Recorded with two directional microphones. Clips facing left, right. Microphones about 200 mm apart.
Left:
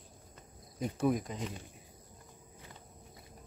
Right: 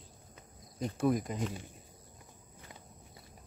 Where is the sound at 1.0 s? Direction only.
Centre (ahead or behind).